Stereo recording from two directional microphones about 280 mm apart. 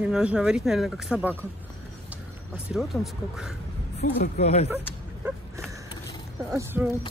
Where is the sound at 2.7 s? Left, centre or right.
Centre.